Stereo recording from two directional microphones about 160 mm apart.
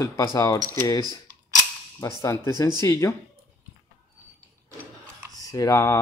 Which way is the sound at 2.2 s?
20° left (ahead or behind).